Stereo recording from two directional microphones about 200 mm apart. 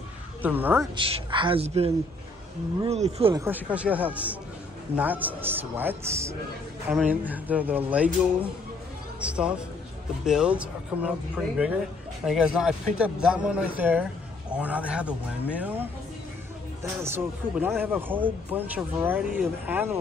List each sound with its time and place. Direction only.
0.4 s speech: 10° right (ahead or behind)
0.9 s a man's voice: 25° right (ahead or behind)
3.3 s speech: 10° right (ahead or behind)
9.2 s speech: 5° right (ahead or behind)
17.0 s speech: 10° right (ahead or behind)